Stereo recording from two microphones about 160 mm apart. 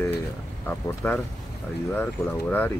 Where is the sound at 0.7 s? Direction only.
10° left (ahead or behind).